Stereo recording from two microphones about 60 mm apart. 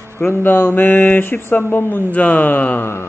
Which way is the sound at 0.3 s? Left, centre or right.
Left.